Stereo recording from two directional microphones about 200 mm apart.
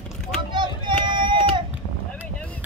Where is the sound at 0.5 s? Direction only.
25° right (ahead or behind).